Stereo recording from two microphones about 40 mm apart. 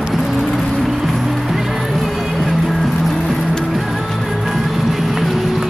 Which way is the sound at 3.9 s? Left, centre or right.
Centre.